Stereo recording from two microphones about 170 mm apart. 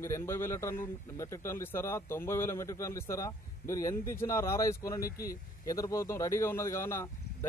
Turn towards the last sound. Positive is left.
turn(degrees=15)  # may be behind; listen again after turning